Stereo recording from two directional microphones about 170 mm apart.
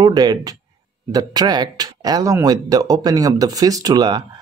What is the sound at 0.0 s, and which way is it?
Speech, 25° right (ahead or behind).